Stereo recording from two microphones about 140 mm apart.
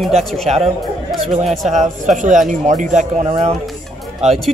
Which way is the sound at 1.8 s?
60° right (ahead or behind).